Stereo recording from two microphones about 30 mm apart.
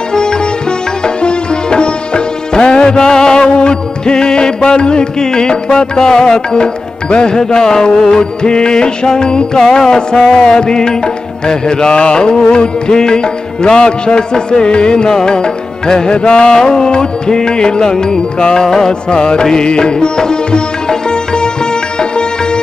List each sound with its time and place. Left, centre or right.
0.1 s sitar: left
1.0 s music: left
8.2 s music: left
14.3 s music: left
14.7 s music: left
16.2 s music: left
16.5 s music: left